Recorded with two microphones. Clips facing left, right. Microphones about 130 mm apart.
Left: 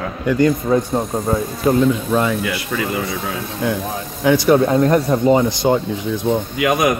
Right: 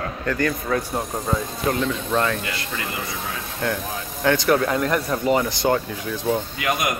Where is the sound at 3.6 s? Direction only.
15° left (ahead or behind).